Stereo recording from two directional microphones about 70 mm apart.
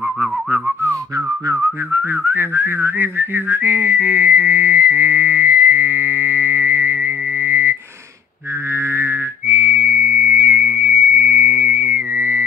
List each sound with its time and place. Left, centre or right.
1.9 s whistling: right
8.9 s whistling: right